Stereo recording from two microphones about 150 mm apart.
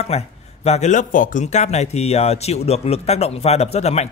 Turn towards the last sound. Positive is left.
turn(degrees=45)  # may be behind; listen again after turning